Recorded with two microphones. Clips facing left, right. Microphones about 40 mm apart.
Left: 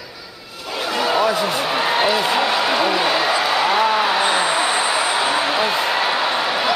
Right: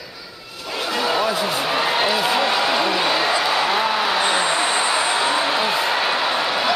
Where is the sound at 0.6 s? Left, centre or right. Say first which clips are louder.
Left 1 dB; centre.